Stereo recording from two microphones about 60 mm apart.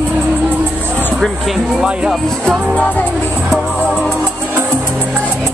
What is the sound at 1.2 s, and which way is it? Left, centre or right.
Speech, centre.